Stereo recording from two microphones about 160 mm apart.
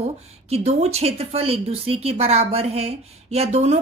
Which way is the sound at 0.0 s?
40° right (ahead or behind).